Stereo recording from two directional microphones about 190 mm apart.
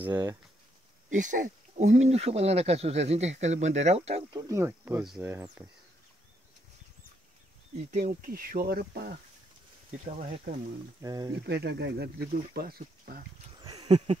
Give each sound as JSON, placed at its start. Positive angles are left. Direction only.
{"t": 0.1, "sound": "speech", "side_deg": -20}
{"t": 1.1, "sound": "speech", "side_deg": -45}
{"t": 4.4, "sound": "speech", "side_deg": -15}
{"t": 5.0, "sound": "speech", "side_deg": 0}
{"t": 5.3, "sound": "speech", "side_deg": -15}
{"t": 7.7, "sound": "speech", "side_deg": -40}
{"t": 10.0, "sound": "speech", "side_deg": -40}
{"t": 11.0, "sound": "speech", "side_deg": -20}
{"t": 11.4, "sound": "speech", "side_deg": -60}
{"t": 13.7, "sound": "a sound", "side_deg": -35}